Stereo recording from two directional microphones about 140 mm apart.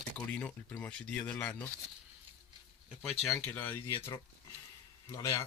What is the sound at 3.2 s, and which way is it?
Speech, 10° left (ahead or behind).